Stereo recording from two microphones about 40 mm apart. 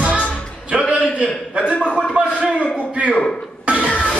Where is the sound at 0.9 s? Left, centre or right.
Centre.